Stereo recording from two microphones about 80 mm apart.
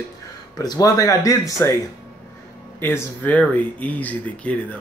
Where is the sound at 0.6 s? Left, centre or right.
Left.